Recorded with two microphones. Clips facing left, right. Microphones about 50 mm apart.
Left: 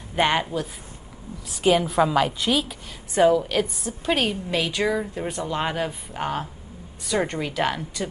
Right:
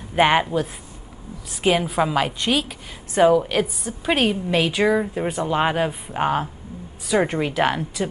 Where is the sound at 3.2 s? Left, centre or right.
Centre.